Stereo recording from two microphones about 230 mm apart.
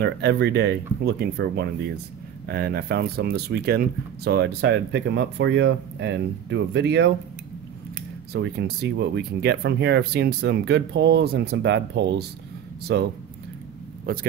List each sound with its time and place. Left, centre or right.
0.0 s speech: right
8.3 s speech: right